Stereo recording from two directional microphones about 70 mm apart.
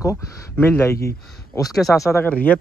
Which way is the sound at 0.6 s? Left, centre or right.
Left.